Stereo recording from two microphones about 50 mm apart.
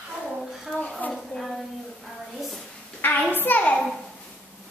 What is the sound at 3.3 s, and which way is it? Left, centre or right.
Speech, left.